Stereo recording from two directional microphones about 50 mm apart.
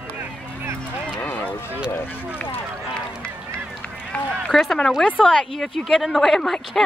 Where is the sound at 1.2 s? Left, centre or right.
Left.